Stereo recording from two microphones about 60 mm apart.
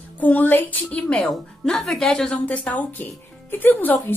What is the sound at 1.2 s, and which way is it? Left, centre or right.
Speech, centre.